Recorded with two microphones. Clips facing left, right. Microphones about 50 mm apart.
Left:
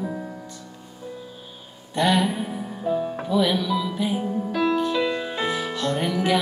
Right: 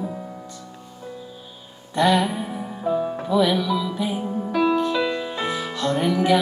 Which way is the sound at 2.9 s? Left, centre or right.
Centre.